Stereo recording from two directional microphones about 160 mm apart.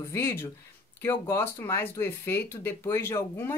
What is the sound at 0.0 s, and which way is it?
Speech, 20° left (ahead or behind).